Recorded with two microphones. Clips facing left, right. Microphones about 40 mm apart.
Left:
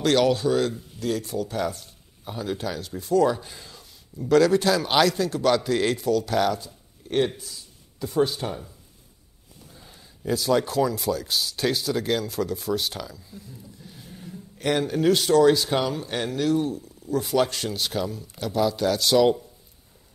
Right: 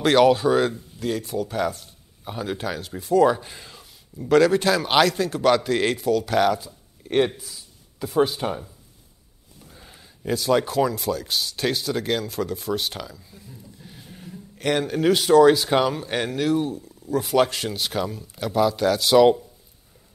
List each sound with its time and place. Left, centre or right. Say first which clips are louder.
0.0 s speech: right 4 dB; centre
2.2 s a man's voice: right 1 dB; centre
9.8 s a sound: right 1 dB; centre
10.4 s speech: right 2 dB; centre